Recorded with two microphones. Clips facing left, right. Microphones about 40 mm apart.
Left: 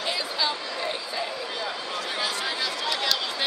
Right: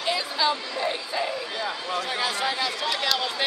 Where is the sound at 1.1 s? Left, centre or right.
Right.